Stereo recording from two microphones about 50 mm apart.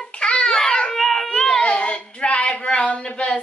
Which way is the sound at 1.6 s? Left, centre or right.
Left.